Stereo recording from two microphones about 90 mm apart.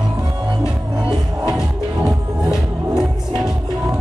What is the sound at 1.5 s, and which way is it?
Music, 10° right (ahead or behind).